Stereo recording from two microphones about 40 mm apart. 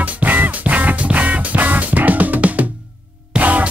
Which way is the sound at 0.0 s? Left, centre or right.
Right.